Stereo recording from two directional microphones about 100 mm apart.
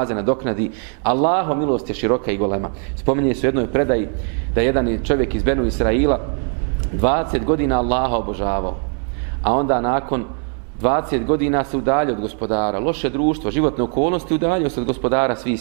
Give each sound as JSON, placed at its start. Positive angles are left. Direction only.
{"t": 0.0, "sound": "a man's voice", "side_deg": -15}